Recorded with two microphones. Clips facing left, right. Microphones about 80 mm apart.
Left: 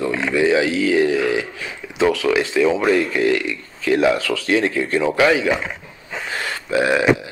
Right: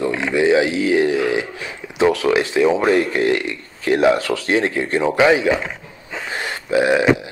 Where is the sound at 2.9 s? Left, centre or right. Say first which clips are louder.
Right 1 dB; right.